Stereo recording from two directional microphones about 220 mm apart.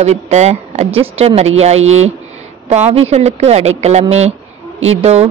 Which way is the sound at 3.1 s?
30° right (ahead or behind).